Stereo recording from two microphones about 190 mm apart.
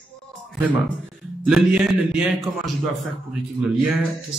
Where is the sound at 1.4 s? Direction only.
5° right (ahead or behind).